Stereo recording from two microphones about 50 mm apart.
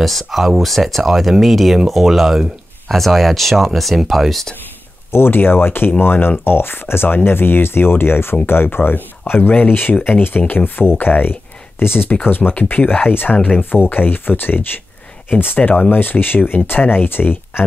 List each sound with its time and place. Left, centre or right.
0.0 s speech: centre
5.1 s speech: left